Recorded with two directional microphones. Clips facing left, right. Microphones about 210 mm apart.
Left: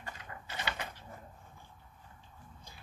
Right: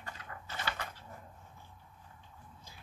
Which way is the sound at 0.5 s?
20° left (ahead or behind).